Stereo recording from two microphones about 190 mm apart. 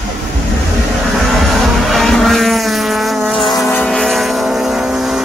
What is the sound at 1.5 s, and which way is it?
Vehicle, centre (ahead or behind).